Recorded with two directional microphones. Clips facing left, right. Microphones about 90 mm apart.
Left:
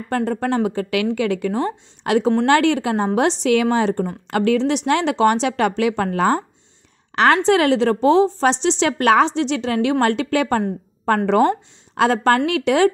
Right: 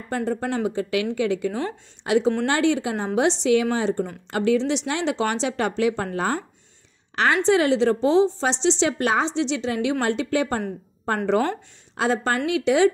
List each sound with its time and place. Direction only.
0.1 s a woman's voice: 65° left (ahead or behind)
0.6 s a woman's voice: 60° left (ahead or behind); by 6.4 s 90° left
7.2 s a woman's voice: 70° left (ahead or behind)
12.0 s a woman's voice: 70° left (ahead or behind)